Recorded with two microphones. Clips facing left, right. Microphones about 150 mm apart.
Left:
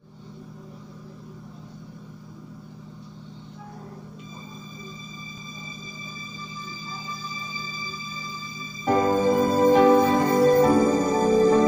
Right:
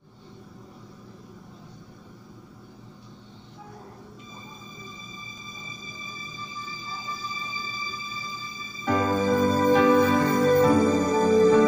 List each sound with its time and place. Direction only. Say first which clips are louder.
8.8 s music: left 3 dB; 40° left (ahead or behind)